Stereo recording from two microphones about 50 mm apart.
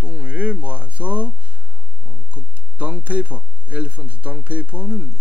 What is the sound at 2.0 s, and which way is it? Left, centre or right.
Speech, right.